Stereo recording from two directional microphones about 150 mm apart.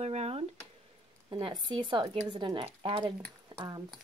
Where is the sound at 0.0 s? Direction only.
45° right (ahead or behind).